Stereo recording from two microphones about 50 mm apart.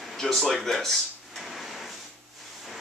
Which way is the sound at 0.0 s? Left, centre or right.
Centre.